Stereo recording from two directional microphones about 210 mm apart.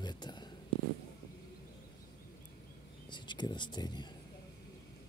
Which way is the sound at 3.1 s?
20° left (ahead or behind).